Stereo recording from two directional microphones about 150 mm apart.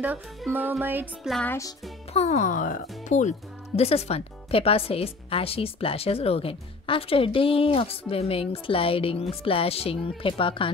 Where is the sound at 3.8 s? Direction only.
45° left (ahead or behind).